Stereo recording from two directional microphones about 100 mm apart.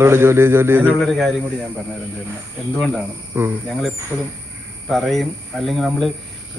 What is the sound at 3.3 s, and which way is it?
Speech, 20° right (ahead or behind).